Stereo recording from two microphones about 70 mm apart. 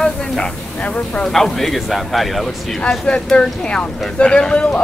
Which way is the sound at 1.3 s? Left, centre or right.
Centre.